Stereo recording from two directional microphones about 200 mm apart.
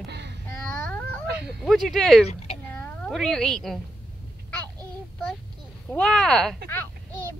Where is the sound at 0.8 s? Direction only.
5° left (ahead or behind).